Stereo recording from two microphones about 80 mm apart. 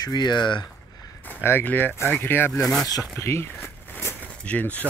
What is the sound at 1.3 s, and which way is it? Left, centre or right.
Speech, left.